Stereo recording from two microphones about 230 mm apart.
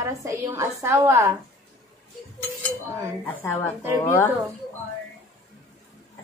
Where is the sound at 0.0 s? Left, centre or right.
Centre.